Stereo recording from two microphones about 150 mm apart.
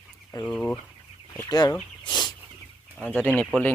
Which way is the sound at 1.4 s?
20° left (ahead or behind).